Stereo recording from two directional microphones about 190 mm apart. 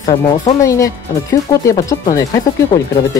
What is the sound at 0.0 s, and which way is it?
Speech, 20° left (ahead or behind).